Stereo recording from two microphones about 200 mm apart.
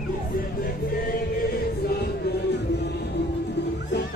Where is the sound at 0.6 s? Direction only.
50° left (ahead or behind).